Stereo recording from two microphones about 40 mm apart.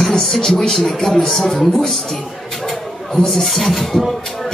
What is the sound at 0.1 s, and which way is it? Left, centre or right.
Speech, centre.